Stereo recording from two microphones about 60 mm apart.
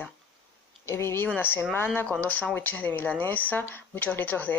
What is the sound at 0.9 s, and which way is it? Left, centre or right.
Speech, left.